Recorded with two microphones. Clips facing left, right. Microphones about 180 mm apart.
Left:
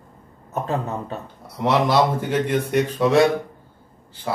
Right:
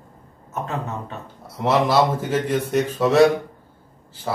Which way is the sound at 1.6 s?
Centre (ahead or behind).